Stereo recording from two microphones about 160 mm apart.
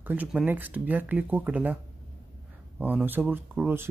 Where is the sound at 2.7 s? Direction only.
10° right (ahead or behind).